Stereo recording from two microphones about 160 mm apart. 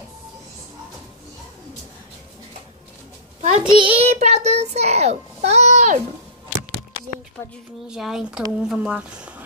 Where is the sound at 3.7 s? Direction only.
35° right (ahead or behind).